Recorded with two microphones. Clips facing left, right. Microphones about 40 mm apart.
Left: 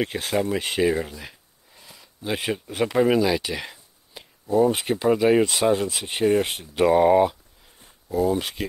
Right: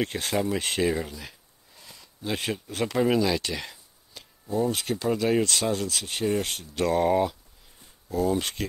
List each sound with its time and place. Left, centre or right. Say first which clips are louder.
0.0 s speech: left 3 dB; centre